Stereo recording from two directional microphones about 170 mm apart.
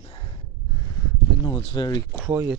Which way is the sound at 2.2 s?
10° right (ahead or behind).